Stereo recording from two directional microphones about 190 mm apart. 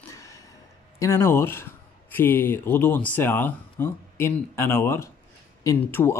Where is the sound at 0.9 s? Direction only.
15° left (ahead or behind).